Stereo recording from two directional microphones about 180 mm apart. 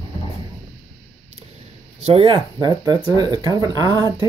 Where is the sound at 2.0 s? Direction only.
35° right (ahead or behind).